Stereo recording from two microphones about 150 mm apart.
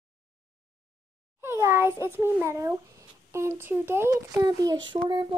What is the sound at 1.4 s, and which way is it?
A child's voice, 15° right (ahead or behind).